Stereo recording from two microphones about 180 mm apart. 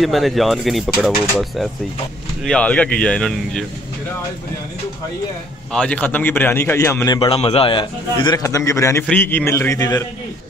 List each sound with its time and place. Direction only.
0.0 s speech: centre (ahead or behind)
5.7 s a man's voice: 5° left (ahead or behind)
7.2 s a man's voice: 30° left (ahead or behind)